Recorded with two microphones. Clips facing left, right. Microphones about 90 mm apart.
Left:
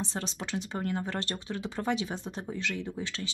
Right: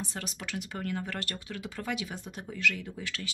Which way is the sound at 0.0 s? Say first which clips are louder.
Left 3 dB; 25° left (ahead or behind).